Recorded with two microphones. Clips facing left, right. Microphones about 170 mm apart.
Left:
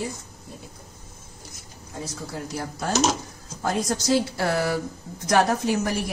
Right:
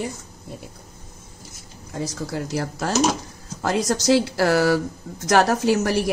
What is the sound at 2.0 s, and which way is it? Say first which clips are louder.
A woman's voice: right 6 dB; 85° right.